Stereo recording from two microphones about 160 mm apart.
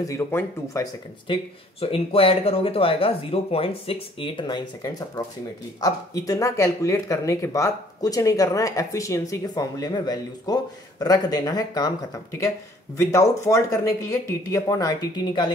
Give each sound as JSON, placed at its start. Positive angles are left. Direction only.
{"t": 0.0, "sound": "speech", "side_deg": 15}
{"t": 1.2, "sound": "speech", "side_deg": 35}